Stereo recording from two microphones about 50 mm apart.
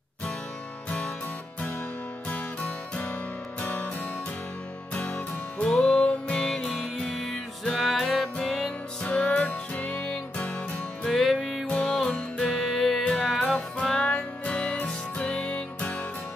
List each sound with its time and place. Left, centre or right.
0.8 s music: left
3.6 s music: left; by 7.1 s centre
7.1 s music: centre; by 9.5 s left
9.5 s music: left
11.1 s music: centre
11.6 s music: centre